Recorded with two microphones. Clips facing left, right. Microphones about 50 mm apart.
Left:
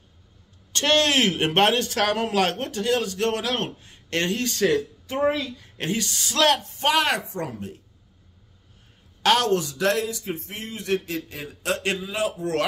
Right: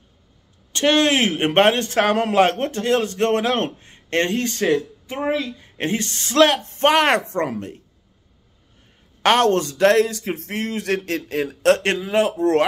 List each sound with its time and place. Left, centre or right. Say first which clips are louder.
0.7 s a man's voice: right 3 dB; right
6.8 s a man's voice: right 8 dB; right
7.2 s speech: right 7 dB; right
9.2 s a man's voice: right 4 dB; right
10.0 s speech: right 4 dB; right